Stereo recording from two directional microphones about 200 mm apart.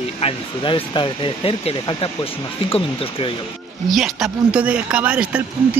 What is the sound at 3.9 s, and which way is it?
Speech, centre (ahead or behind).